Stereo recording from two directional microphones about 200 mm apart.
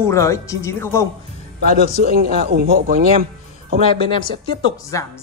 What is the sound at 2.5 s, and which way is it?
Speech, 50° right (ahead or behind).